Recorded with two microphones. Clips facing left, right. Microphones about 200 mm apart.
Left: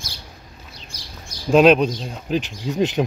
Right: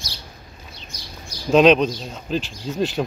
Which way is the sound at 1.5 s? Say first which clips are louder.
Left 1 dB; 5° left (ahead or behind).